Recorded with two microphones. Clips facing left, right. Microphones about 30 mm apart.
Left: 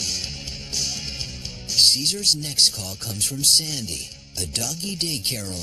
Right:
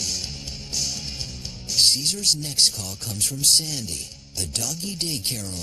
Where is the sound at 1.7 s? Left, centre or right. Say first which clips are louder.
Left 2 dB; centre.